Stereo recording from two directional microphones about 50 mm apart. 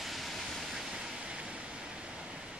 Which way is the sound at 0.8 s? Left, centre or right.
Centre.